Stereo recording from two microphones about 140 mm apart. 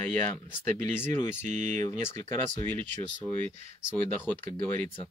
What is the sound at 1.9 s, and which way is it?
Speech, 20° left (ahead or behind).